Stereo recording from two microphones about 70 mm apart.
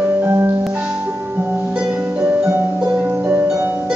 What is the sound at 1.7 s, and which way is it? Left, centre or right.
Harp, centre.